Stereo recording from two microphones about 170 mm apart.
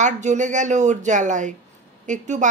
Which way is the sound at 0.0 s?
45° right (ahead or behind).